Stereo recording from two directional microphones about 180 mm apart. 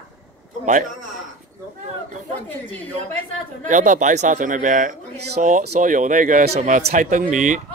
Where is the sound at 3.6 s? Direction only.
45° right (ahead or behind).